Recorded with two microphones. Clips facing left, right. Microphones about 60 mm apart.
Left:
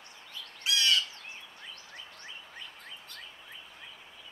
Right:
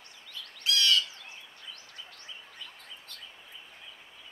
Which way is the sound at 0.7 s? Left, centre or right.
Left.